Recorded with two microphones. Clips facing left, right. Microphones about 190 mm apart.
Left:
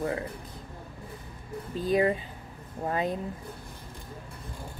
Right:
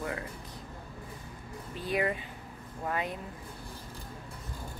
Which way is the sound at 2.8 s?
30° left (ahead or behind).